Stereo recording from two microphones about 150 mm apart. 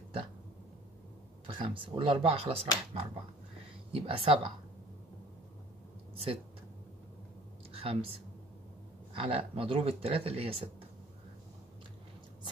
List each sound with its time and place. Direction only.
1.6 s speech: 35° right (ahead or behind)
6.1 s a woman's voice: 40° right (ahead or behind)
7.7 s a woman's voice: 40° right (ahead or behind)
9.1 s speech: 35° right (ahead or behind)